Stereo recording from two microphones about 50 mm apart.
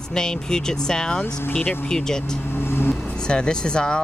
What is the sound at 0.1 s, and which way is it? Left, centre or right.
Speech, centre.